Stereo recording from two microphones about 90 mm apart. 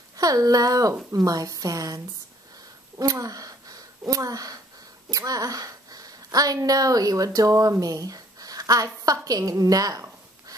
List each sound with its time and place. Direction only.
0.2 s a woman's voice: 40° right (ahead or behind)
3.0 s a woman's voice: 40° right (ahead or behind)